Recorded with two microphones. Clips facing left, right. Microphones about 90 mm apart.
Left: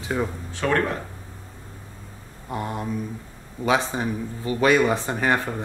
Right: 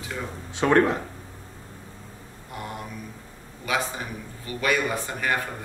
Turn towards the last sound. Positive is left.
turn(degrees=30)  # may be behind; listen again after turning